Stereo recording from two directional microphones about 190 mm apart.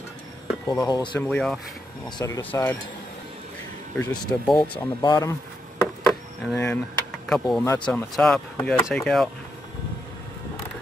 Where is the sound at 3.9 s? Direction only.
Centre (ahead or behind).